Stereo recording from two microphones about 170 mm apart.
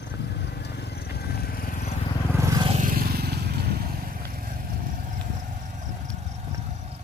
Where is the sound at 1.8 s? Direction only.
35° left (ahead or behind).